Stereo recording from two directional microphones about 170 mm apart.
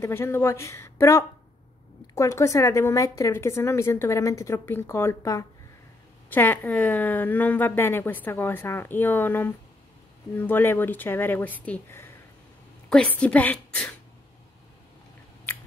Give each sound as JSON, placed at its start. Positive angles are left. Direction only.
{"t": 0.0, "sound": "a woman's voice", "side_deg": 15}